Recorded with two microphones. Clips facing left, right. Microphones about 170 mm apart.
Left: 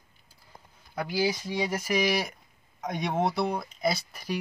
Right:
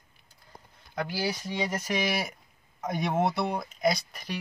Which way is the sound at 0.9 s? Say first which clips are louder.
Left 3 dB; 15° left (ahead or behind).